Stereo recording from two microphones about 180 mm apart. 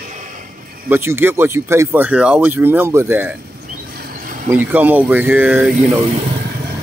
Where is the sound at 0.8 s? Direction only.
10° right (ahead or behind).